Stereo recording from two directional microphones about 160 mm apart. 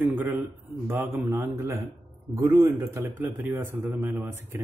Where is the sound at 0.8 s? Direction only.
15° right (ahead or behind).